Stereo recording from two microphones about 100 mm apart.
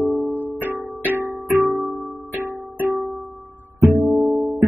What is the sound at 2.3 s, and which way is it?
Music, 20° right (ahead or behind).